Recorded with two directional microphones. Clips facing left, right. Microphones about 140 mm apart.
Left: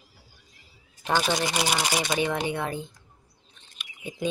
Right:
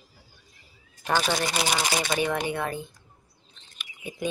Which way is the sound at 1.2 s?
5° left (ahead or behind).